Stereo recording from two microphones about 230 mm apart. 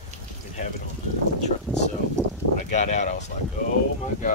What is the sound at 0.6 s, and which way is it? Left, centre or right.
Speech, left.